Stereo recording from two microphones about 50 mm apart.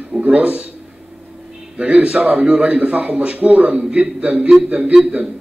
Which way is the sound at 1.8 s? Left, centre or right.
Right.